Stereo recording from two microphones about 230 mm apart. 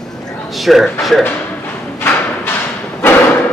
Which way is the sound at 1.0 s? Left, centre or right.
Centre.